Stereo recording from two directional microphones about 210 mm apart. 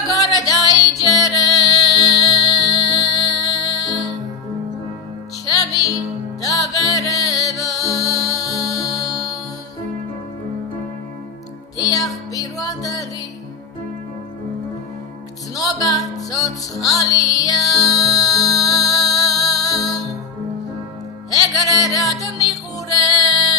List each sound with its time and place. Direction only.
0.1 s music: 15° left (ahead or behind)
5.4 s music: 15° left (ahead or behind)
11.7 s music: 15° left (ahead or behind)
15.5 s music: 15° left (ahead or behind)
21.3 s music: 15° left (ahead or behind)